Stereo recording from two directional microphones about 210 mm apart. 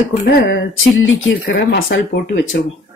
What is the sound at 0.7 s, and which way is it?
Speech, 60° left (ahead or behind).